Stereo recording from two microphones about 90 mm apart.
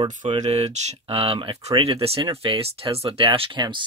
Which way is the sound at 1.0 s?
90° right.